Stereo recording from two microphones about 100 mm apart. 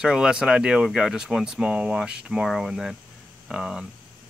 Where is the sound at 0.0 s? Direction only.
5° right (ahead or behind).